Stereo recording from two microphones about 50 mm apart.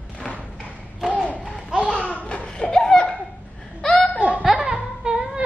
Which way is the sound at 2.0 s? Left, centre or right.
Left.